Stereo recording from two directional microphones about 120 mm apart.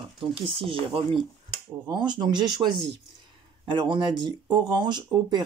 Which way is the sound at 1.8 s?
35° right (ahead or behind).